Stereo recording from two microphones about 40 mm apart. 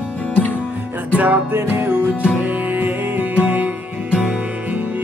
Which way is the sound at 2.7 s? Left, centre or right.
Right.